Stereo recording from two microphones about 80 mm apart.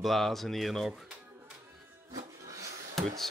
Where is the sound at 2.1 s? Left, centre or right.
Right.